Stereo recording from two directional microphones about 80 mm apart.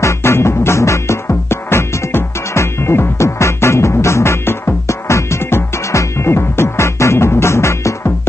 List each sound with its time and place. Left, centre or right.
0.0 s music: left